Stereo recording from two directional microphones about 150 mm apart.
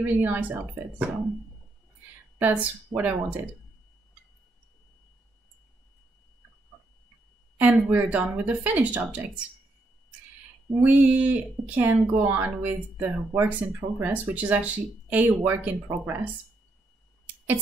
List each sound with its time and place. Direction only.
0.0 s speech: 10° right (ahead or behind)
2.3 s speech: 10° right (ahead or behind)
7.5 s speech: 10° right (ahead or behind)
10.8 s speech: 10° right (ahead or behind)